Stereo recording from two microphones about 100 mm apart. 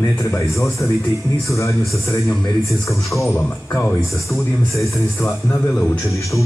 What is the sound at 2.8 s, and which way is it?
A man's voice, 30° left (ahead or behind).